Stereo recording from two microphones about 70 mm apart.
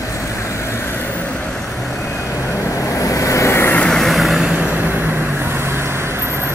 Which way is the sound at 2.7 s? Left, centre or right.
Left.